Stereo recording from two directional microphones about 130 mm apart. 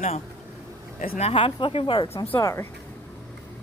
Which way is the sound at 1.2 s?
45° left (ahead or behind).